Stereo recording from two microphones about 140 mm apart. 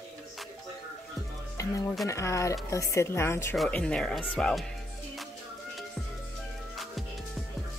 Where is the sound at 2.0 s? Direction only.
20° left (ahead or behind).